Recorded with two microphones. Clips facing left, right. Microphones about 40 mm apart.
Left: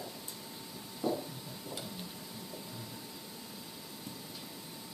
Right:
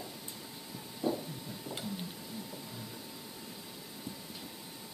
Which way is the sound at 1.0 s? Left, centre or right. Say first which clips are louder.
Even; right.